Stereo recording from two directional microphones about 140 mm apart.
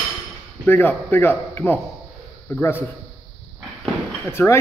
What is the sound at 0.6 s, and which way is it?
A man's voice, 15° left (ahead or behind).